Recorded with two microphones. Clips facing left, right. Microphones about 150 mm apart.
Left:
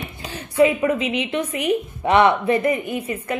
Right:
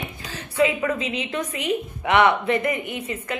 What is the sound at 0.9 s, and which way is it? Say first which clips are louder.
Speech: left 5 dB; 30° right (ahead or behind).